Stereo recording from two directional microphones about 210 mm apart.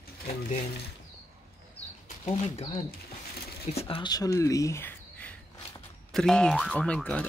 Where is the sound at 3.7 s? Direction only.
30° left (ahead or behind).